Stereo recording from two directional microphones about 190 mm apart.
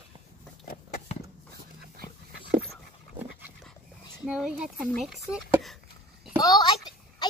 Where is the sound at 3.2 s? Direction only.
10° right (ahead or behind).